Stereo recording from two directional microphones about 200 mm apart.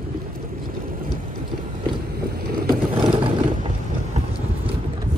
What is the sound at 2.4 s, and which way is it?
Vehicle, 45° right (ahead or behind).